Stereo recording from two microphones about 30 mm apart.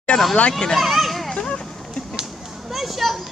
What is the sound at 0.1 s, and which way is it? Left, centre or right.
Speech, centre.